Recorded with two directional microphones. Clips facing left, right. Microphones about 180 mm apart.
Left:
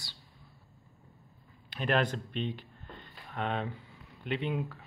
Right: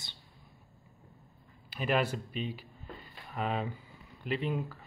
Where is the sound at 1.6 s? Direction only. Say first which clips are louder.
Left 1 dB; 5° right (ahead or behind).